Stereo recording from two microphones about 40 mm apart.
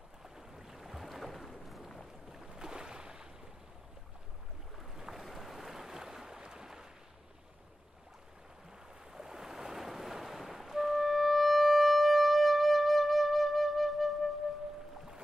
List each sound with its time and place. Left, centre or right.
0.4 s boat: centre
2.3 s boat: centre
4.7 s boat: centre
5.2 s a sound: centre
9.1 s ocean: centre